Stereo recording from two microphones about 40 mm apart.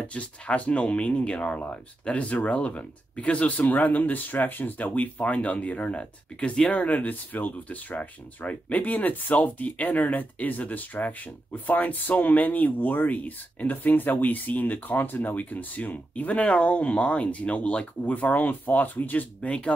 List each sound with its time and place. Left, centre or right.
0.1 s speech: left
16.4 s speech: left